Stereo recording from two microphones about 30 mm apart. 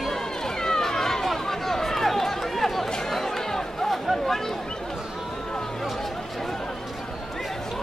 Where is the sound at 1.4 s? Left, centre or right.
Centre.